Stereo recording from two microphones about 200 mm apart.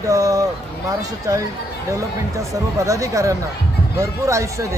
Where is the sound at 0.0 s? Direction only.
15° right (ahead or behind).